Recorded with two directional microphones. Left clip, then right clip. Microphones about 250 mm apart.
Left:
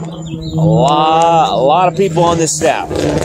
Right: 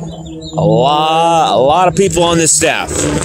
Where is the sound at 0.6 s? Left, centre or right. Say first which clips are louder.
Right 1 dB; right.